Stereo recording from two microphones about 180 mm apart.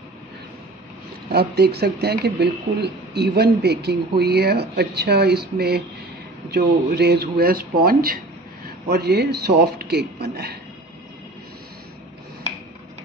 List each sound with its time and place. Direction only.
1.3 s speech: 65° right (ahead or behind)